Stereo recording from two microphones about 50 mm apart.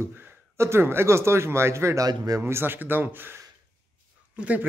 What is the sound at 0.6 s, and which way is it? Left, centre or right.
Speech, right.